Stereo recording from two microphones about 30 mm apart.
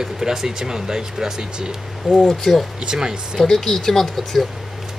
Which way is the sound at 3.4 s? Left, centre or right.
Centre.